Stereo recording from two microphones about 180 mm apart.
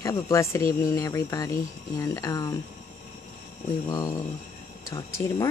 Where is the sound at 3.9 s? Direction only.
20° left (ahead or behind).